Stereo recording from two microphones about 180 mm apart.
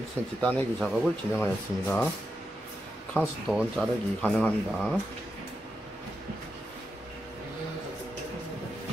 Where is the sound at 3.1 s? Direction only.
5° left (ahead or behind).